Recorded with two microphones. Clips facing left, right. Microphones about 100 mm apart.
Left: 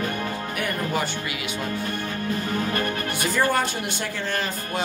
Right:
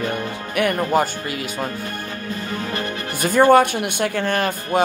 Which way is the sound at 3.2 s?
50° right (ahead or behind).